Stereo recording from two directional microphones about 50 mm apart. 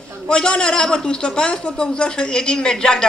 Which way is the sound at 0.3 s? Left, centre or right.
Centre.